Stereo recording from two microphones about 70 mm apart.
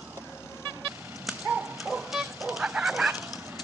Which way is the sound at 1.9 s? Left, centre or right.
Centre.